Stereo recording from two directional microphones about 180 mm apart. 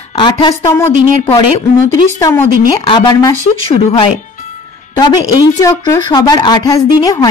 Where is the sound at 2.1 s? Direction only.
15° left (ahead or behind).